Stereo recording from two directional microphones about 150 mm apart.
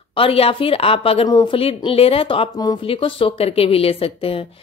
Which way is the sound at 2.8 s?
35° left (ahead or behind).